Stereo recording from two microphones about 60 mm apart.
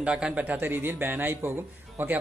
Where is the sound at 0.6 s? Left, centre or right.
Right.